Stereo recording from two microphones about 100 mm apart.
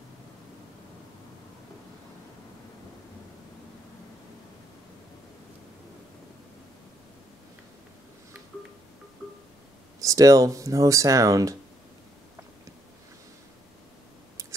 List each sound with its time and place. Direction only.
9.9 s speech: 35° right (ahead or behind)